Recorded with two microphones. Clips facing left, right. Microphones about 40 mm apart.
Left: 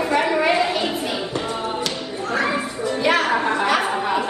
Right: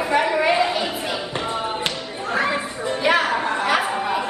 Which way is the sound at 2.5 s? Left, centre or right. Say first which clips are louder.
Left 1 dB; right.